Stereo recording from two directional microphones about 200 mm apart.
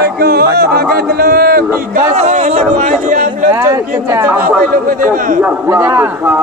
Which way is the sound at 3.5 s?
15° right (ahead or behind).